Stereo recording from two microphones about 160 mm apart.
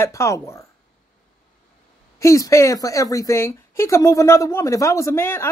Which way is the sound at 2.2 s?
20° left (ahead or behind).